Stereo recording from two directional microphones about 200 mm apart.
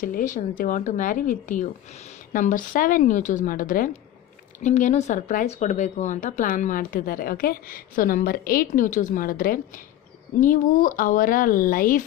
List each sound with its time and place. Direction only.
0.0 s speech: 40° left (ahead or behind)